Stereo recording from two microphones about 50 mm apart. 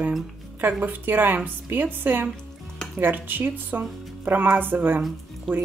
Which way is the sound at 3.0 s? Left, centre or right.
Right.